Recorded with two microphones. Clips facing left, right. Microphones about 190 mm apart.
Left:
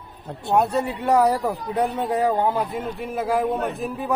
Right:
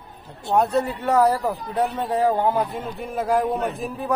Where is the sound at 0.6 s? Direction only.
10° left (ahead or behind).